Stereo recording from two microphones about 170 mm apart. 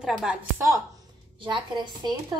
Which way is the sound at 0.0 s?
5° right (ahead or behind).